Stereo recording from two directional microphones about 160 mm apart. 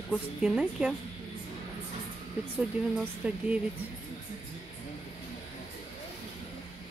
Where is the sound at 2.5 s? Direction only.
5° right (ahead or behind).